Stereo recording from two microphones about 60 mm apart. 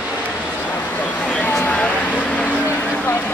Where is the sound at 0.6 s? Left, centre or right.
Left.